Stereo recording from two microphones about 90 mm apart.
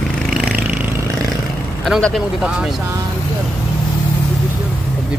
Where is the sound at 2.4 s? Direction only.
5° right (ahead or behind).